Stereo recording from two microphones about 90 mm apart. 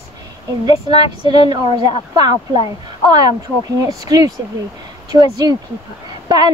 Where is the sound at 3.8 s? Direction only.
45° right (ahead or behind).